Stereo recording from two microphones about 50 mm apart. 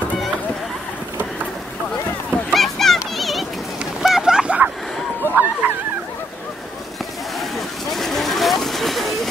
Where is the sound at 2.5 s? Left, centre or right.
Centre.